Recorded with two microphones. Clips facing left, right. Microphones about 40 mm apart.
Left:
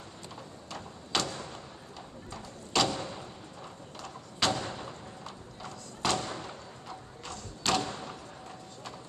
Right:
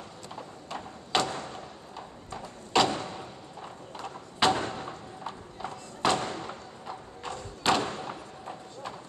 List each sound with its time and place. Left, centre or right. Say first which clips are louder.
0.4 s a sound: right 5 dB; centre
3.2 s clip-clop: right 3 dB; centre
7.8 s thump: right 4 dB; right